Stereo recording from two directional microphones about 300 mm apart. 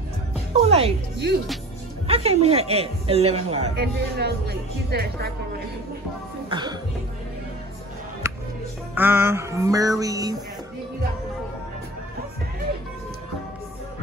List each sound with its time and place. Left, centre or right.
0.5 s a woman's voice: right
1.2 s speech: right
2.0 s speech: centre
3.7 s speech: right
6.5 s music: centre
8.2 s music: centre